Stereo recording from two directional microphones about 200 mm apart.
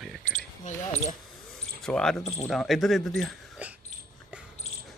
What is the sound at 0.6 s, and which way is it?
Speech, 35° left (ahead or behind).